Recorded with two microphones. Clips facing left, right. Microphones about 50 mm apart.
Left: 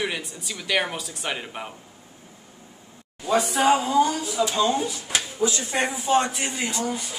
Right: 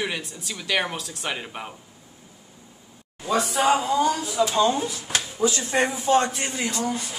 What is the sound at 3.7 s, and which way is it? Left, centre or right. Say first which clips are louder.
Speech: left 2 dB; centre.